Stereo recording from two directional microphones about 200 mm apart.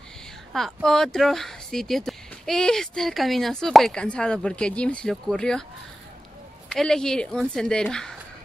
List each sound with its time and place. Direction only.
0.5 s speech: centre (ahead or behind)
6.7 s speech: 5° left (ahead or behind)